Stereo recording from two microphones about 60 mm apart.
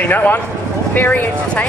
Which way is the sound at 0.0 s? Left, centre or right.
Left.